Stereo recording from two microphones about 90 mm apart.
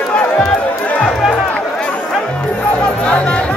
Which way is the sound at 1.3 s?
15° left (ahead or behind).